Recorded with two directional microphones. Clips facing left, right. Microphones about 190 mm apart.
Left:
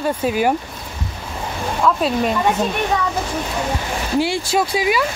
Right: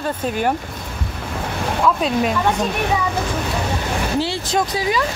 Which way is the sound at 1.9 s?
Centre (ahead or behind).